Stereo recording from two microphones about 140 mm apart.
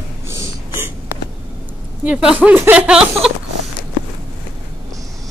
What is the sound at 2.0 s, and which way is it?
Speech, 10° right (ahead or behind).